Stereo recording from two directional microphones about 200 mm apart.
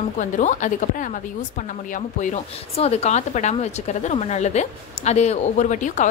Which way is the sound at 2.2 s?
35° left (ahead or behind).